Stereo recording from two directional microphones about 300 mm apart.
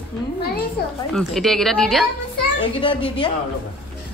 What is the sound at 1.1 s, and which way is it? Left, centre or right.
Speech, centre.